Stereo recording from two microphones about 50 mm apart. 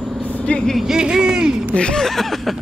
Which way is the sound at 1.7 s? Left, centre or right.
Centre.